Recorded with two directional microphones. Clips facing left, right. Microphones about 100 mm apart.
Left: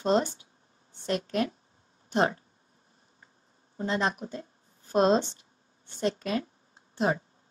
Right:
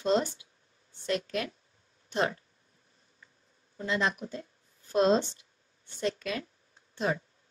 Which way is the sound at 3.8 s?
35° left (ahead or behind).